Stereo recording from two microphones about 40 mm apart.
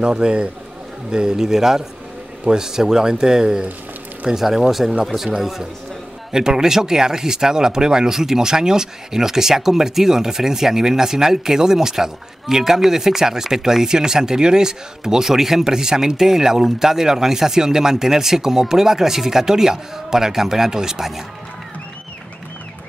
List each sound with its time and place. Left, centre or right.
0.0 s a man's voice: right